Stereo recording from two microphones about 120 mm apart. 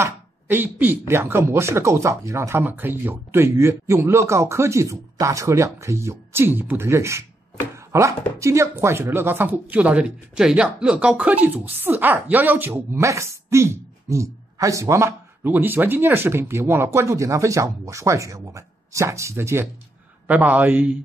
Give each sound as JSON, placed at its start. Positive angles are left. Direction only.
{"t": 0.0, "sound": "a man's voice", "side_deg": -15}